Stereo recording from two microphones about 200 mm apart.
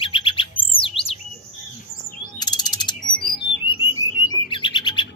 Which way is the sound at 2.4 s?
20° left (ahead or behind).